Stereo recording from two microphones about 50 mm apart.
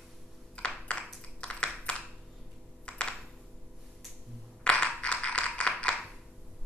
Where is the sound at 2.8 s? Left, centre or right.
Left.